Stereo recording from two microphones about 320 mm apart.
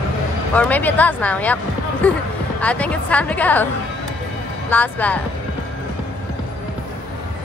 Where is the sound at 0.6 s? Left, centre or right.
Centre.